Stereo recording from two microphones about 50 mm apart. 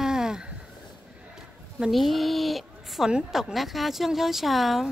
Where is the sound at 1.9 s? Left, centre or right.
Centre.